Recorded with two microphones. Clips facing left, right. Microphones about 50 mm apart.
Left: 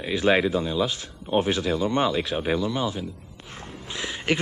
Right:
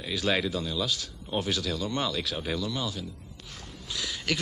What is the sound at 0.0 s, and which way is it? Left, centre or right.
A man's voice, left.